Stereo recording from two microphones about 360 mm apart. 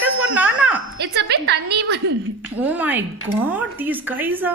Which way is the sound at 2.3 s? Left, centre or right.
Centre.